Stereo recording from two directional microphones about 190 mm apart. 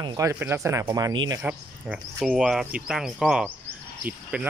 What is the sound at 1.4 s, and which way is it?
Speech, 5° right (ahead or behind).